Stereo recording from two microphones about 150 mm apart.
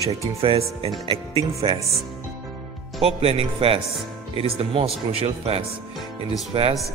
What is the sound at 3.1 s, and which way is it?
A man's voice, 40° right (ahead or behind).